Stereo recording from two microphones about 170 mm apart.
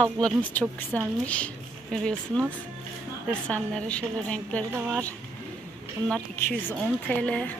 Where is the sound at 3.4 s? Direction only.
5° left (ahead or behind).